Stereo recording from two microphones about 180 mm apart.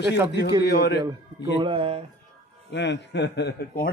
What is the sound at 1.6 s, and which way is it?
Speech, 30° right (ahead or behind).